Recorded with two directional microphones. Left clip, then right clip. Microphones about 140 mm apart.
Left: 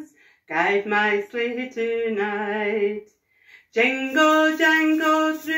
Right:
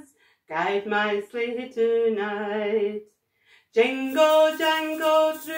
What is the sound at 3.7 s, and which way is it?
Speech, 10° right (ahead or behind).